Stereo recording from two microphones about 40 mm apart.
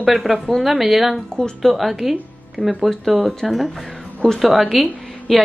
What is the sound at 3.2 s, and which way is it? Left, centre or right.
A woman's voice, centre.